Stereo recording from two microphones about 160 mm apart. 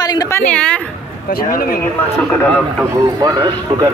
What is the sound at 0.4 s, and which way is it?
Speech, 5° left (ahead or behind).